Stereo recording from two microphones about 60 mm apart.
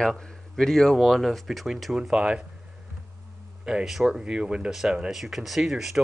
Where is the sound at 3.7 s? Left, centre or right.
Centre.